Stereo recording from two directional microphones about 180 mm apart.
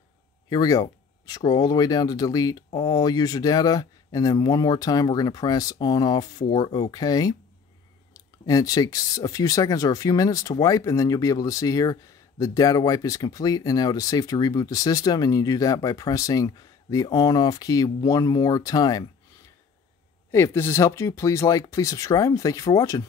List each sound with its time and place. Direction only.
0.5 s speech: 20° left (ahead or behind)
20.2 s speech: 15° left (ahead or behind)